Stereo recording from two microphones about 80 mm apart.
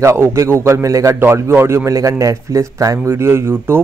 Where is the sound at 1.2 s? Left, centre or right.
Right.